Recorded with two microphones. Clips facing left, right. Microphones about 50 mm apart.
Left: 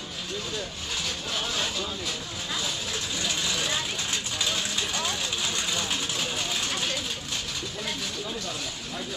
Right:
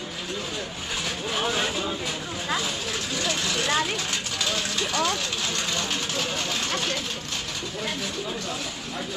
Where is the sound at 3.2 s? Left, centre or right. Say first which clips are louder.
Right 3 dB; right.